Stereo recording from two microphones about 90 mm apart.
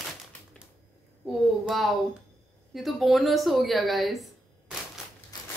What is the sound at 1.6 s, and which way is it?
A woman's voice, centre (ahead or behind).